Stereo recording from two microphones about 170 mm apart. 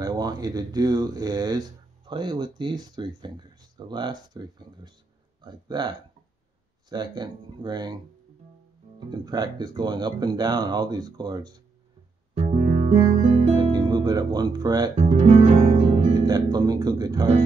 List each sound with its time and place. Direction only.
0.0 s speech: 25° right (ahead or behind)
9.1 s speech: 25° right (ahead or behind)
12.4 s music: 40° right (ahead or behind)
13.0 s music: 35° right (ahead or behind)
13.7 s speech: 25° right (ahead or behind)
15.0 s music: 45° right (ahead or behind)
16.1 s speech: 25° right (ahead or behind)